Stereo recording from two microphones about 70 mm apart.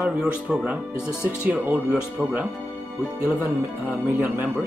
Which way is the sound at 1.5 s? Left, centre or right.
Right.